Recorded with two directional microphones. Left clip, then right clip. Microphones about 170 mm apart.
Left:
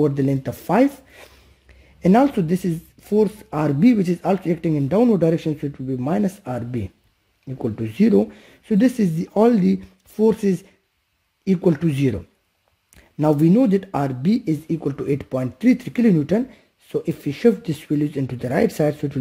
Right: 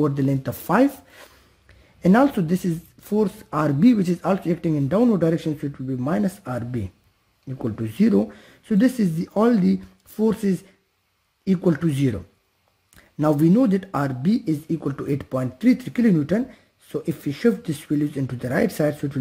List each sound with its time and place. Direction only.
0.0 s speech: 10° left (ahead or behind)
13.4 s speech: 15° left (ahead or behind)